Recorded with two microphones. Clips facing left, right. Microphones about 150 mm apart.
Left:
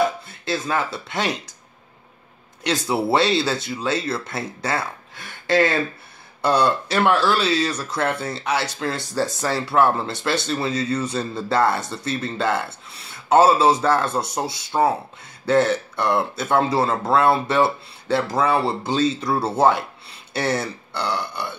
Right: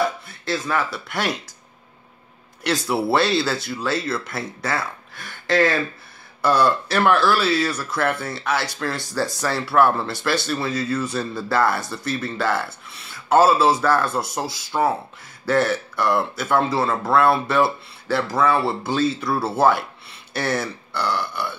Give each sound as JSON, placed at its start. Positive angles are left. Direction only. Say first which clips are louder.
{"t": 0.0, "sound": "speech", "louder": "left 2 dB", "side_deg": 25}
{"t": 2.6, "sound": "speech", "louder": "even", "side_deg": 20}